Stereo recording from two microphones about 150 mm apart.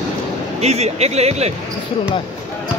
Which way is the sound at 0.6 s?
45° right (ahead or behind).